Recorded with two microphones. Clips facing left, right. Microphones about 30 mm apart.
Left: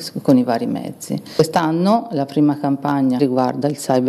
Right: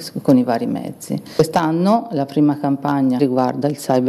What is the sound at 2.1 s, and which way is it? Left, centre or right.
Speech, centre.